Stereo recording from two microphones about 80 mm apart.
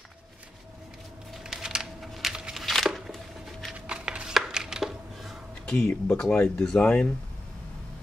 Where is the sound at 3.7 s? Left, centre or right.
Centre.